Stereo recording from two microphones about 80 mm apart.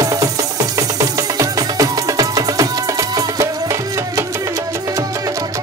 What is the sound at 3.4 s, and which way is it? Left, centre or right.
Music, right.